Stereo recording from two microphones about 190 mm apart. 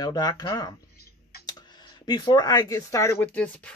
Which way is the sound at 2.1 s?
20° left (ahead or behind).